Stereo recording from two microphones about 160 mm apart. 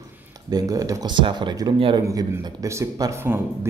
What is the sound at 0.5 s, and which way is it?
Speech, 25° right (ahead or behind).